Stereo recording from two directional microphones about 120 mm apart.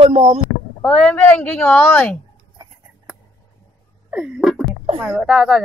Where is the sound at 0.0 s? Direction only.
55° right (ahead or behind).